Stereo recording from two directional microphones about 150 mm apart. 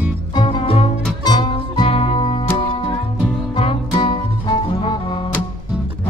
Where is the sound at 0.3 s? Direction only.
35° left (ahead or behind).